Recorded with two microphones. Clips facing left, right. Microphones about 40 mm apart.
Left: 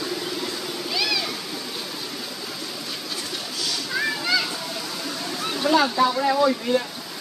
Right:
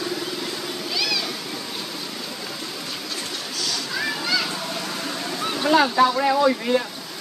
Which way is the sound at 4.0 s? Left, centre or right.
Centre.